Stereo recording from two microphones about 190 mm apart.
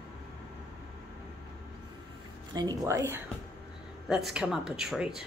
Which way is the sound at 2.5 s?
20° right (ahead or behind).